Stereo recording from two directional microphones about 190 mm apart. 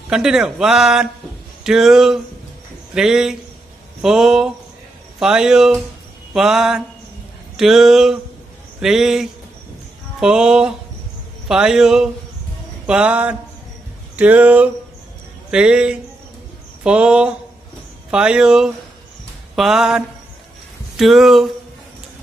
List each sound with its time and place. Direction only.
0.1 s speech: 5° right (ahead or behind)